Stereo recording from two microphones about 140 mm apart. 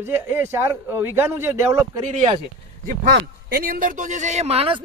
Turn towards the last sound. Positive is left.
turn(degrees=-40)  # may be behind; listen again after turning